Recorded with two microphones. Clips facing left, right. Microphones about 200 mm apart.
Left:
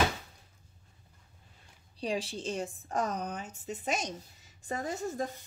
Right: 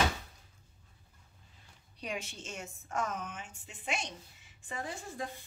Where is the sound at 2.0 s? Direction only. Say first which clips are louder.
Left 7 dB; 30° left (ahead or behind).